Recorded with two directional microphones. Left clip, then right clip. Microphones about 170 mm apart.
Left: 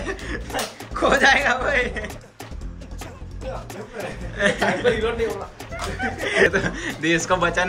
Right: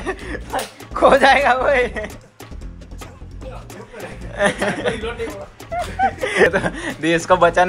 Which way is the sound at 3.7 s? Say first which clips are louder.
Left 2 dB; 5° right (ahead or behind).